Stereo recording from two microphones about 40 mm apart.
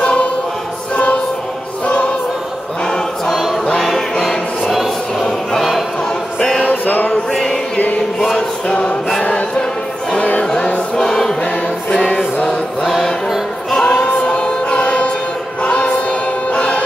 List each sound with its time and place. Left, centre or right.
0.0 s choir: left
3.3 s choir: centre
3.7 s music: centre
4.6 s choir: centre
5.6 s choir: centre
6.6 s music: left
8.4 s music: left
10.4 s choir: centre
12.8 s music: centre
13.7 s singing: centre
14.0 s choir: left